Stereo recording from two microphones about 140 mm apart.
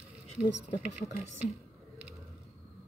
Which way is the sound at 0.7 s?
55° left (ahead or behind).